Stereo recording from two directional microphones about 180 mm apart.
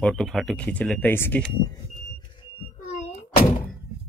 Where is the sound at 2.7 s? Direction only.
40° left (ahead or behind).